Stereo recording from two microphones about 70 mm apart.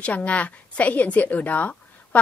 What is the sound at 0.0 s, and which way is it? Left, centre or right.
A woman's voice, centre.